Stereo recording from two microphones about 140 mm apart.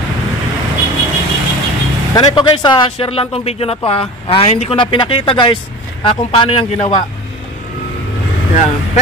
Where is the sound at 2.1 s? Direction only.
35° left (ahead or behind).